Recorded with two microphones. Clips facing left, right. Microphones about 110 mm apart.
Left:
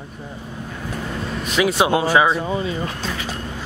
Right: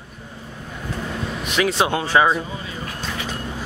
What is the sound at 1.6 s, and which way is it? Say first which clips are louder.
Speech: left 3 dB; 10° left (ahead or behind).